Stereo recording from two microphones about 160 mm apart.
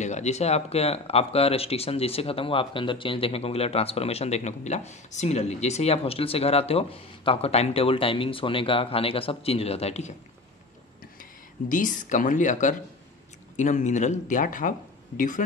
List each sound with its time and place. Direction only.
0.0 s speech: 45° left (ahead or behind)
11.7 s speech: 55° left (ahead or behind)